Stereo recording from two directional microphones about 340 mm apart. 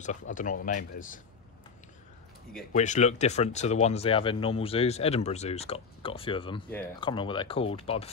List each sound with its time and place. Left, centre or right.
0.0 s speech: left
2.7 s speech: centre